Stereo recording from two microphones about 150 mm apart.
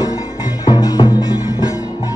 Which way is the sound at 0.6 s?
25° left (ahead or behind).